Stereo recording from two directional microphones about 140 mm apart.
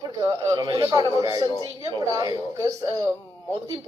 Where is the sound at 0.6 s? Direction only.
30° right (ahead or behind).